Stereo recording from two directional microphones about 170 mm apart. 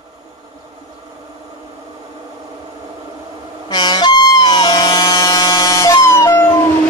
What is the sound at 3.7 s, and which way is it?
Music, 25° left (ahead or behind).